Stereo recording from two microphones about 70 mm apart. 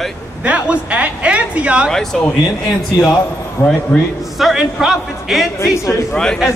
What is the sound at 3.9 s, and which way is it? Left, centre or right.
Speech, centre.